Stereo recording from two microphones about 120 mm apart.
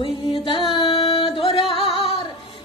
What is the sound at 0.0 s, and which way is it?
Music, 45° left (ahead or behind).